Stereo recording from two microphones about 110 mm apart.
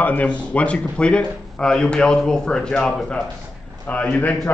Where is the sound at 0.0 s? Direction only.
15° left (ahead or behind).